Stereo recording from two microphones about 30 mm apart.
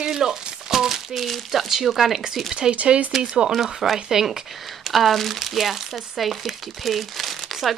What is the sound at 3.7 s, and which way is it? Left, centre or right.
Speech, centre.